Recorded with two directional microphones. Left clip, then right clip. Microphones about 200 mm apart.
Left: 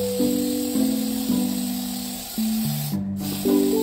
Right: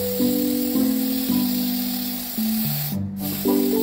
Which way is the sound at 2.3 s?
15° left (ahead or behind).